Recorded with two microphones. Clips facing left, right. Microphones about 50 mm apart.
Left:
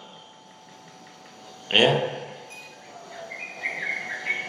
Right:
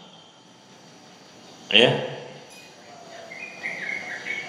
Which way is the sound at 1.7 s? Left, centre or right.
Right.